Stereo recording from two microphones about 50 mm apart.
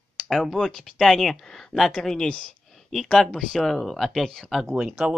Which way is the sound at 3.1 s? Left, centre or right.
Centre.